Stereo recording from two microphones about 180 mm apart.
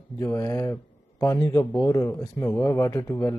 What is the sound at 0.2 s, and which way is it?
A man's voice, 20° left (ahead or behind).